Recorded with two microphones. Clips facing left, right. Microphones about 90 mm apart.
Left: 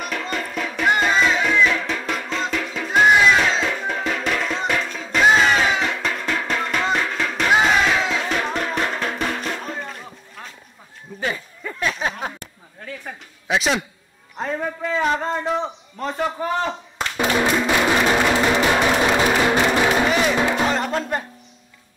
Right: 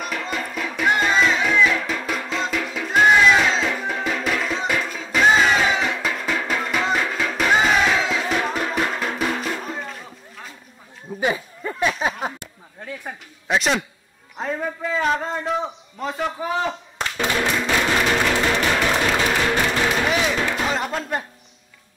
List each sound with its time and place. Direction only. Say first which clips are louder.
0.0 s music: left 1 dB; centre (ahead or behind)
11.1 s a sound: right 4 dB; 15° right (ahead or behind)
11.9 s a sound: right 1 dB; 5° right (ahead or behind)
13.5 s a man's voice: even; centre (ahead or behind)
17.2 s music: left 3 dB; 15° left (ahead or behind)
20.1 s music: left 2 dB; centre (ahead or behind)
20.3 s music: left 4 dB; 15° left (ahead or behind)
20.6 s music: left 3 dB; centre (ahead or behind)